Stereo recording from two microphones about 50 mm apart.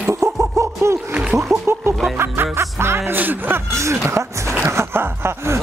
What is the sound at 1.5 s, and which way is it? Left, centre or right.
Music, right.